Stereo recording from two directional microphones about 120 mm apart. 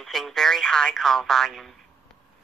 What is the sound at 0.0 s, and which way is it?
Speech, centre (ahead or behind).